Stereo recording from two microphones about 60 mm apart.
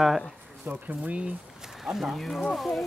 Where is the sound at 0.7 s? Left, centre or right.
Right.